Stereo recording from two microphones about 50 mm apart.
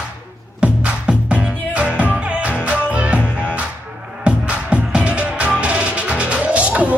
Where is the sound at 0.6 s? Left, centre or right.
Right.